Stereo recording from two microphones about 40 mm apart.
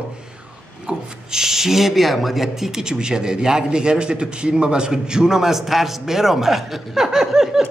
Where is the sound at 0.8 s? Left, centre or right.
Centre.